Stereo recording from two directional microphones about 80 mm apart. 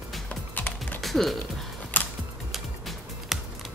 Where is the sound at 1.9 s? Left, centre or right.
Left.